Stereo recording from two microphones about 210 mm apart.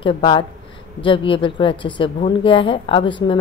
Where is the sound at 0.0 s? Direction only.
25° left (ahead or behind).